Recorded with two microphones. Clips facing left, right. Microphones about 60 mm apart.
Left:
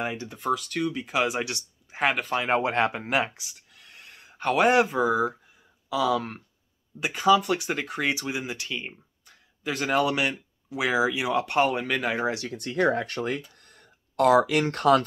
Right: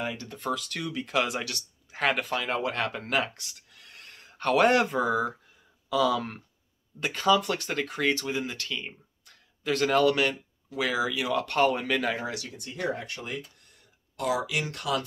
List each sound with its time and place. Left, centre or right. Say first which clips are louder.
0.0 s speech: left 3 dB; left
0.3 s speech: left 4 dB; centre
1.4 s speech: left 5 dB; left
3.3 s speech: even; centre
12.0 s speech: left 3 dB; left
12.4 s speech: left 8 dB; left